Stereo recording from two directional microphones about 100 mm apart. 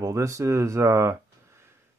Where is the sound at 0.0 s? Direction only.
30° right (ahead or behind).